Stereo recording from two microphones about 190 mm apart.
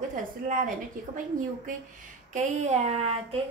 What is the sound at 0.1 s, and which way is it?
A woman's voice, 45° right (ahead or behind).